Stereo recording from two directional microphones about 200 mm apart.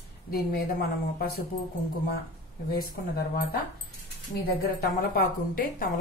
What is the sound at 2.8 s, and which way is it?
Speech, 45° left (ahead or behind).